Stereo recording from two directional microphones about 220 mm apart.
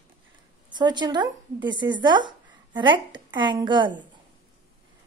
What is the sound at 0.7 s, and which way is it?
Speech, 20° right (ahead or behind).